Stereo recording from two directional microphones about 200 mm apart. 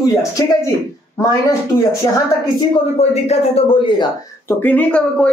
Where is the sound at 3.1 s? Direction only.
30° left (ahead or behind).